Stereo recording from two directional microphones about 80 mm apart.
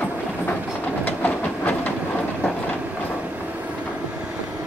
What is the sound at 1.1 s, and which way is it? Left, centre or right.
Train, left.